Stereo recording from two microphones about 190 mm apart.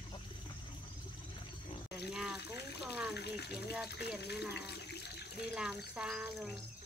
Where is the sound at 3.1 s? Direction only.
60° left (ahead or behind).